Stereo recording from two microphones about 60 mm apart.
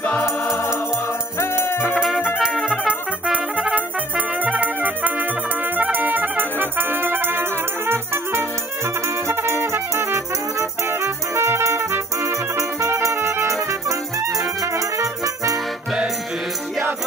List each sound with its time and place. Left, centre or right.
0.2 s music: left
2.0 s music: centre
2.9 s brass instrument: right
4.4 s music: right
13.5 s music: right